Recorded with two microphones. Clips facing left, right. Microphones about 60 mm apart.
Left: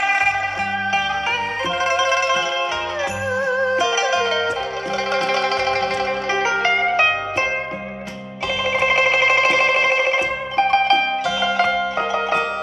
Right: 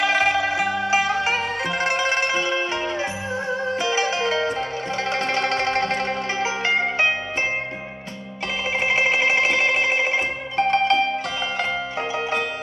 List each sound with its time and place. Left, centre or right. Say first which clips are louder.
2.0 s music: left 4 dB; right
3.7 s music: left 4 dB; right
6.3 s music: left 5 dB; left
8.7 s music: left 3 dB; left
12.1 s music: left 2 dB; left